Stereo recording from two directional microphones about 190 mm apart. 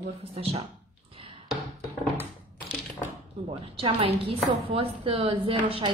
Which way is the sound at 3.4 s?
30° right (ahead or behind).